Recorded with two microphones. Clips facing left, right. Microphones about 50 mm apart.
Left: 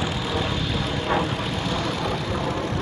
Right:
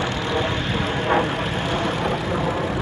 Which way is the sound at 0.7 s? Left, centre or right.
Right.